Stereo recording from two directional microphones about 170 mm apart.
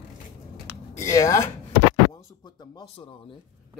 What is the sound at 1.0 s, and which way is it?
Speech, 20° left (ahead or behind).